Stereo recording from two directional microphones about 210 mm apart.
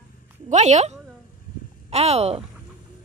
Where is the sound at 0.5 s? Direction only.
35° right (ahead or behind).